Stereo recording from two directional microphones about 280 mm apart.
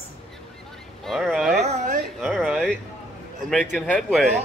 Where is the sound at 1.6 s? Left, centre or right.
Right.